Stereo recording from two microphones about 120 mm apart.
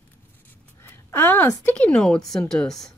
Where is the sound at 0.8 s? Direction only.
15° left (ahead or behind).